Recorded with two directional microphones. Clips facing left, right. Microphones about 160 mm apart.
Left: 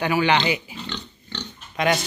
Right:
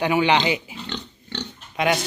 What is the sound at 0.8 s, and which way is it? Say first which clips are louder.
Pig: right 1 dB; 55° right (ahead or behind).